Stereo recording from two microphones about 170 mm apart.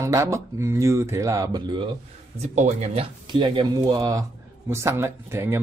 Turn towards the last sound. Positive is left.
turn(degrees=-15)  # may be behind; listen again after turning